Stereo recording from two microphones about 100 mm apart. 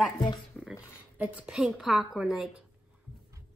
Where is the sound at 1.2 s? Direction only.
15° right (ahead or behind).